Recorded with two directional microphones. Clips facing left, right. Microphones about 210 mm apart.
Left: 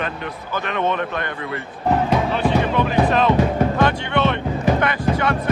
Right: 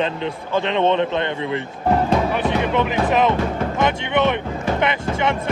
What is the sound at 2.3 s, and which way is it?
A man's voice, 15° right (ahead or behind).